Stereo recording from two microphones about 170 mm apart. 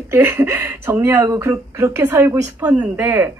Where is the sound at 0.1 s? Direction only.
15° right (ahead or behind).